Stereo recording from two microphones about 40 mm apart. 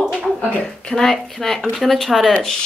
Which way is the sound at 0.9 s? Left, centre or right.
Centre.